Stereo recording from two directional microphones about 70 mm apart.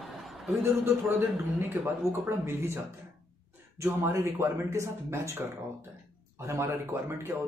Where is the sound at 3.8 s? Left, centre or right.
Right.